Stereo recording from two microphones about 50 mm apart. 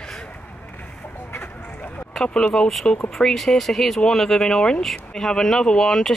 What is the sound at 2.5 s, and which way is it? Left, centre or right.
Speech, centre.